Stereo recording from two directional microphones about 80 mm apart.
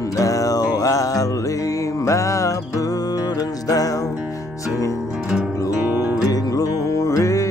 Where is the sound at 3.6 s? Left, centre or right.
Left.